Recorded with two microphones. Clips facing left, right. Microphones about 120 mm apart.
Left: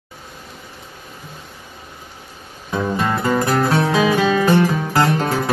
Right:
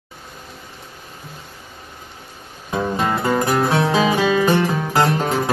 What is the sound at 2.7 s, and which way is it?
Music, 20° right (ahead or behind).